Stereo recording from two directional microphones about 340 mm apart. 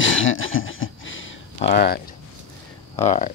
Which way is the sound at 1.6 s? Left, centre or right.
Left.